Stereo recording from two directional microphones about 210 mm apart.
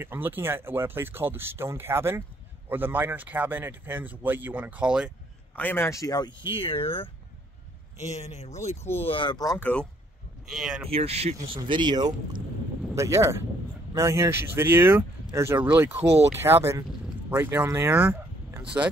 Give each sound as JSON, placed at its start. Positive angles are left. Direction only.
{"t": 0.0, "sound": "speech", "side_deg": -10}
{"t": 5.6, "sound": "speech", "side_deg": 10}
{"t": 10.9, "sound": "speech", "side_deg": -30}